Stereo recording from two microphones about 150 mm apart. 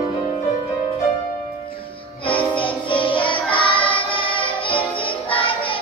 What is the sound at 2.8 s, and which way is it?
Music, 35° left (ahead or behind).